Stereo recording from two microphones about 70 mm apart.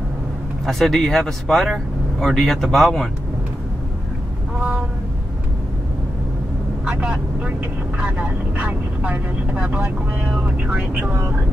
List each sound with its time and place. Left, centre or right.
0.7 s speech: centre
4.6 s a sound: right
6.8 s speech: centre